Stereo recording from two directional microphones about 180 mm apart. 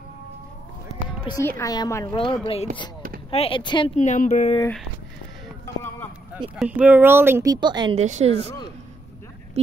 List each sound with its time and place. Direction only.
1.2 s a woman's voice: 20° left (ahead or behind)
2.4 s speech: 35° left (ahead or behind)
3.9 s speech: 40° left (ahead or behind)
6.5 s speech: 5° right (ahead or behind); by 8.0 s 25° right (ahead or behind)
8.0 s speech: 40° right (ahead or behind)